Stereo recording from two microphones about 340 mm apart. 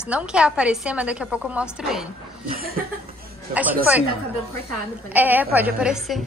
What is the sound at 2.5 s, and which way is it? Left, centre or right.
Chuckle, right.